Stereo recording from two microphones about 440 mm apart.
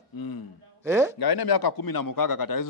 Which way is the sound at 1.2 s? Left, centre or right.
Left.